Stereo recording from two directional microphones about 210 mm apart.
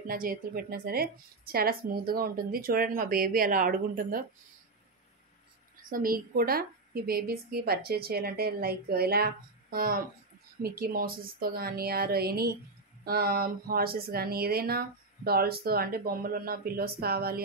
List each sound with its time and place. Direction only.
0.0 s speech: 45° right (ahead or behind)
5.9 s speech: 40° right (ahead or behind)